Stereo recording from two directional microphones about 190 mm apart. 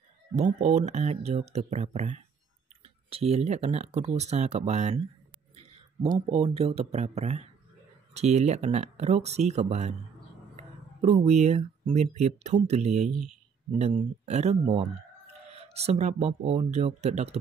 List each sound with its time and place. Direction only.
0.4 s speech: 35° right (ahead or behind)
6.1 s speech: 30° right (ahead or behind)